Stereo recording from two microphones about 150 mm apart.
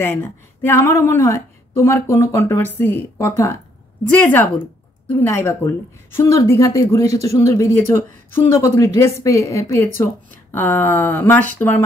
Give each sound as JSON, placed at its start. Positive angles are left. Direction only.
{"t": 0.0, "sound": "a woman's voice", "side_deg": 15}